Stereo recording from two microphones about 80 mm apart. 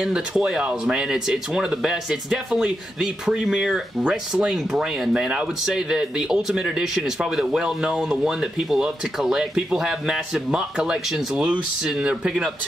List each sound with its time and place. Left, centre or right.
0.0 s speech: centre